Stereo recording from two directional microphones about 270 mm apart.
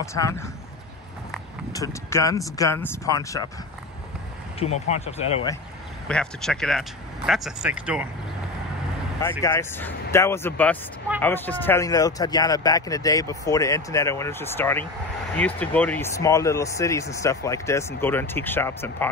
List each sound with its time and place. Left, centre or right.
0.0 s speech: centre
1.7 s speech: centre
4.6 s speech: left
6.0 s speech: centre
9.4 s speech: centre